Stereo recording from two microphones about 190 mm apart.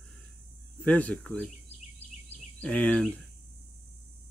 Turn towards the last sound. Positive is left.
turn(degrees=5)  # may be behind; listen again after turning